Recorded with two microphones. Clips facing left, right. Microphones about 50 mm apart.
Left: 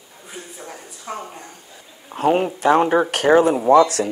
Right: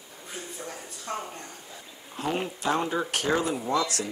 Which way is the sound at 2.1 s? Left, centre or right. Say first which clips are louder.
Left 12 dB; left.